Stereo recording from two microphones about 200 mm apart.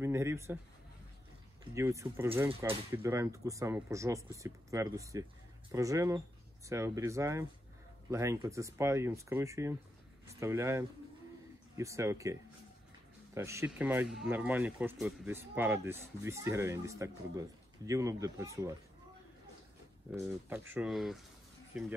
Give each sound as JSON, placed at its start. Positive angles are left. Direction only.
{"t": 0.0, "sound": "speech", "side_deg": -15}
{"t": 1.8, "sound": "speech", "side_deg": -15}
{"t": 20.4, "sound": "speech", "side_deg": -10}